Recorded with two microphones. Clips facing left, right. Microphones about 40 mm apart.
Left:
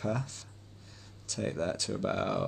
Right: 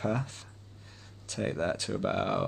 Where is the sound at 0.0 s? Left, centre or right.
Right.